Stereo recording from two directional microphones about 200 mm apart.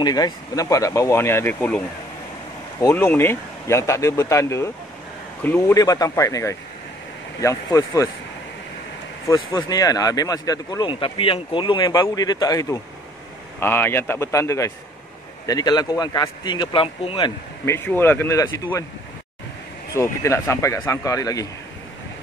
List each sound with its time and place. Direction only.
0.0 s speech: 20° left (ahead or behind)
2.8 s speech: 10° left (ahead or behind)
9.3 s speech: 20° left (ahead or behind)
17.6 s speech: 10° left (ahead or behind)
19.9 s speech: 15° left (ahead or behind)